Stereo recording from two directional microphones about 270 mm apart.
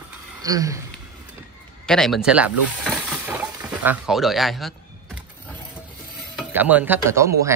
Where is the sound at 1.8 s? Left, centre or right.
Centre.